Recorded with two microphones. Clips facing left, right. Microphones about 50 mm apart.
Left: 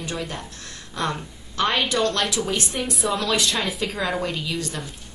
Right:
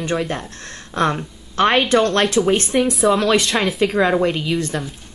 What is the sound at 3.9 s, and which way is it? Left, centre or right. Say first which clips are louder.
Speech: right 9 dB; right.